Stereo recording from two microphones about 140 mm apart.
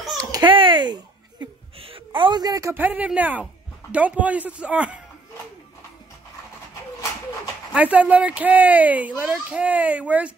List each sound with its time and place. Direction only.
0.2 s babbling: 30° right (ahead or behind)
1.4 s a sound: 40° right (ahead or behind); by 3.4 s 10° right (ahead or behind)
3.9 s a child's voice: 10° right (ahead or behind)
7.7 s a child's voice: 10° right (ahead or behind)